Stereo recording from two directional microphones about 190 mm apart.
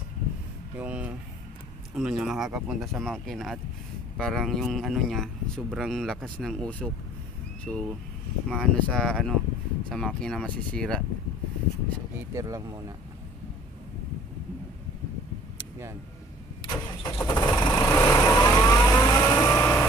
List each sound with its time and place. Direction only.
0.7 s a sound: 5° right (ahead or behind)
2.0 s speech: centre (ahead or behind)
12.4 s speech: 15° right (ahead or behind)
16.6 s vehicle: 25° left (ahead or behind)